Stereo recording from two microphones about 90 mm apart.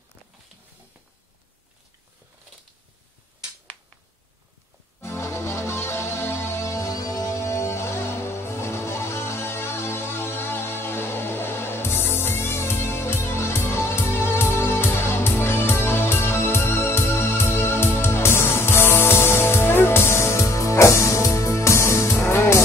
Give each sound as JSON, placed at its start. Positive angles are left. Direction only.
{"t": 5.0, "sound": "music", "side_deg": 30}